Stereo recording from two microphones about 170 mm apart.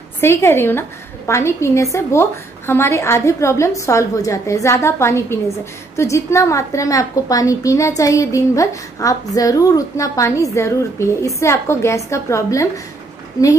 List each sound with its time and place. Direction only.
0.2 s a woman's voice: 15° left (ahead or behind)